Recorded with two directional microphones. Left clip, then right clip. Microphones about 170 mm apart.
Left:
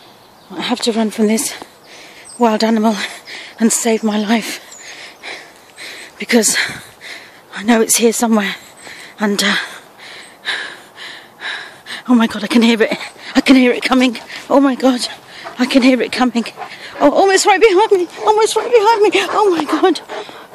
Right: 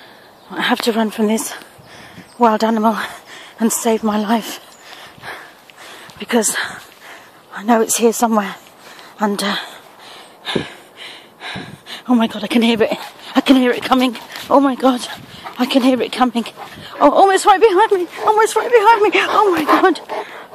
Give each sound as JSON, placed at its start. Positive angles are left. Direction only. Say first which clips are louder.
{"t": 0.6, "sound": "speech", "louder": "right 1 dB", "side_deg": 0}
{"t": 5.0, "sound": "dog", "louder": "left 1 dB", "side_deg": 10}
{"t": 6.1, "sound": "speech", "louder": "left 4 dB", "side_deg": 25}
{"t": 7.9, "sound": "speech", "louder": "left 1 dB", "side_deg": 5}
{"t": 9.2, "sound": "a sound", "louder": "left 3 dB", "side_deg": 10}
{"t": 10.1, "sound": "a sound", "louder": "left 1 dB", "side_deg": 0}
{"t": 12.1, "sound": "speech", "louder": "left 2 dB", "side_deg": 10}
{"t": 19.2, "sound": "speech", "louder": "right 1 dB", "side_deg": -30}
{"t": 19.8, "sound": "speech", "louder": "even", "side_deg": 0}
{"t": 20.2, "sound": "a sound", "louder": "right 2 dB", "side_deg": -5}